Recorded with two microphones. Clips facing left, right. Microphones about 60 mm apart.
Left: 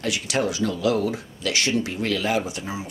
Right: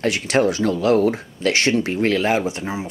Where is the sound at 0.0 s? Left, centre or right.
Right.